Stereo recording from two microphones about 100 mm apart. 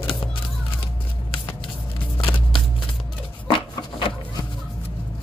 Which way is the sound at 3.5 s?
60° left (ahead or behind).